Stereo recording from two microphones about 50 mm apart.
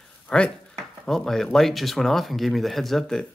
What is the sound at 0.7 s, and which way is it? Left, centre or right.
Speech, centre.